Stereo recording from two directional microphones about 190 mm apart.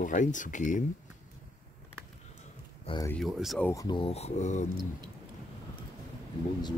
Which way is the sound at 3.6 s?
20° left (ahead or behind).